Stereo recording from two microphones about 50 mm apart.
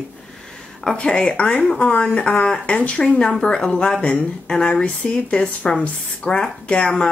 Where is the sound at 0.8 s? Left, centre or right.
Left.